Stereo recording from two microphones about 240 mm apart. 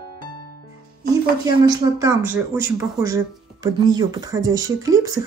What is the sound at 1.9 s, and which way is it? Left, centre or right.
Speech, centre.